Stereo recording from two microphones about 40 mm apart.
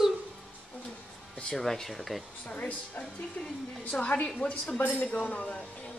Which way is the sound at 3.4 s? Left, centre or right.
Left.